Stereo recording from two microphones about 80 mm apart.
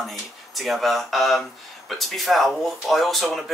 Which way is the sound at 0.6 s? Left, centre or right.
Centre.